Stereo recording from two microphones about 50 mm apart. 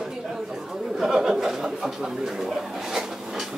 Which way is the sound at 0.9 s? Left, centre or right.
Centre.